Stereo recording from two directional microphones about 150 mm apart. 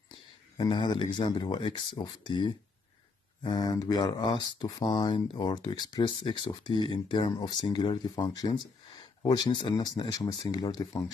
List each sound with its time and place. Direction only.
0.6 s speech: 30° left (ahead or behind)